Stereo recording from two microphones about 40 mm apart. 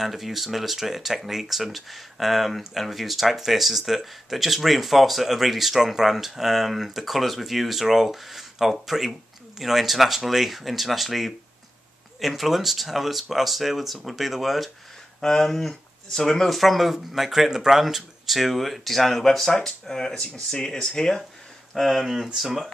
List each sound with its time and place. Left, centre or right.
0.0 s speech: centre
15.2 s speech: centre
16.4 s speech: centre
21.7 s speech: centre